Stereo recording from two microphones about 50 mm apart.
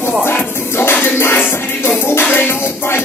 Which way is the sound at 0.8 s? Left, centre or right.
Left.